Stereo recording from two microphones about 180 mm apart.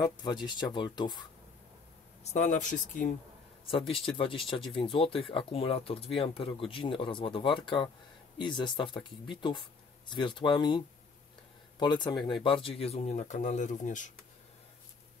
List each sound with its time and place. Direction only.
0.0 s speech: 25° left (ahead or behind)
2.3 s speech: 45° left (ahead or behind)
3.7 s speech: 30° left (ahead or behind)
11.8 s speech: 25° left (ahead or behind); by 14.1 s 45° left (ahead or behind)